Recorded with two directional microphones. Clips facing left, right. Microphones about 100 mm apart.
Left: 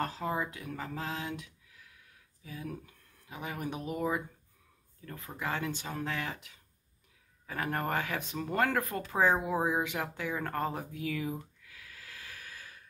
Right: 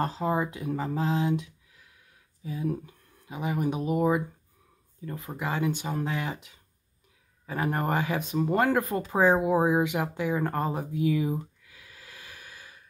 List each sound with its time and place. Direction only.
0.0 s speech: 20° right (ahead or behind)